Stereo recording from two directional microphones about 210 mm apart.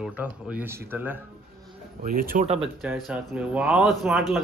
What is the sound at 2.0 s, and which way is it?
Speech, 45° right (ahead or behind).